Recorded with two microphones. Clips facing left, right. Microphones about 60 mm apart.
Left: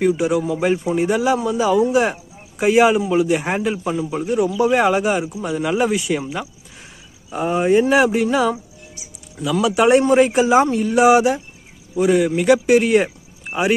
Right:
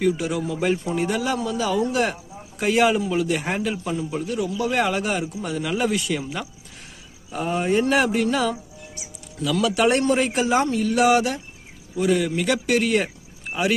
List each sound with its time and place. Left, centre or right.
0.0 s a man's voice: centre